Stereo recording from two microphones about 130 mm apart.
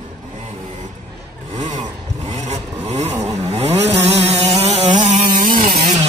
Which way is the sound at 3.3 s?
60° right (ahead or behind).